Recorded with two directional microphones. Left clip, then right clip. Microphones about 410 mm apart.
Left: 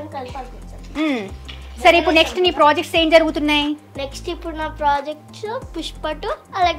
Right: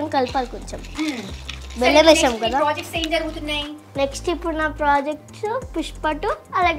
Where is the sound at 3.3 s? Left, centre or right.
Left.